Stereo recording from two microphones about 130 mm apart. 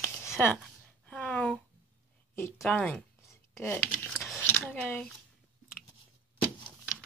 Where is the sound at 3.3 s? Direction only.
15° left (ahead or behind).